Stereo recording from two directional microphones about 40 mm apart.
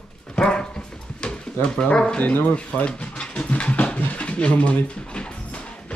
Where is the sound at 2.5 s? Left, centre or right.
Left.